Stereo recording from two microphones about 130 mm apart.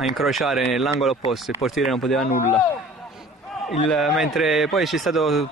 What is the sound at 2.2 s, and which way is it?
Speech, 75° left (ahead or behind).